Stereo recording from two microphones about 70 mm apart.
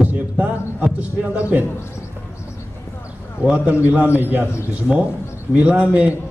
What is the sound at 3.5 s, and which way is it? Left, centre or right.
Speech, right.